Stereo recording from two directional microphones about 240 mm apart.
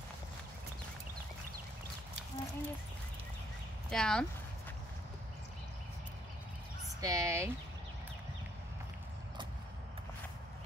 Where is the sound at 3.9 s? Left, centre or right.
Centre.